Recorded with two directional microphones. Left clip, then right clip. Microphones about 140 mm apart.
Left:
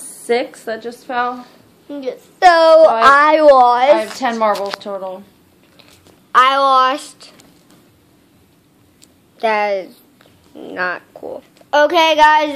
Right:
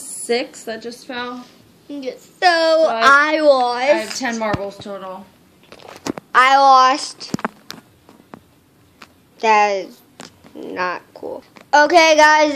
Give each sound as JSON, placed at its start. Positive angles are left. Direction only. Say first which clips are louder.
{"t": 0.3, "sound": "a woman's voice", "louder": "left 3 dB", "side_deg": -25}
{"t": 1.3, "sound": "a woman's voice", "louder": "left 4 dB", "side_deg": -20}
{"t": 6.3, "sound": "a woman's voice", "louder": "right 1 dB", "side_deg": -15}
{"t": 9.4, "sound": "a woman's voice", "louder": "right 2 dB", "side_deg": -15}